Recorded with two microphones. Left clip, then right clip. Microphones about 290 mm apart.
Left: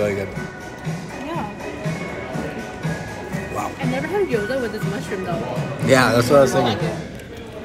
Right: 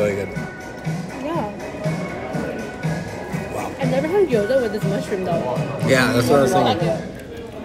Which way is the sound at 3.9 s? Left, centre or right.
Right.